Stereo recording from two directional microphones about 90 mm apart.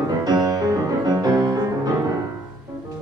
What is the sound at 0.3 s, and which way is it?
Music, 45° right (ahead or behind).